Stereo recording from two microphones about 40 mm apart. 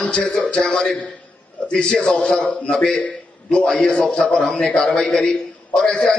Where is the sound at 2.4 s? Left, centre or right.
Left.